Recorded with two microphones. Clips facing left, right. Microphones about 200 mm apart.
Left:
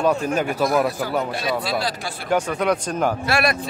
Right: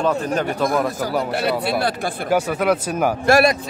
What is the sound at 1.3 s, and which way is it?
Speech, 65° right (ahead or behind).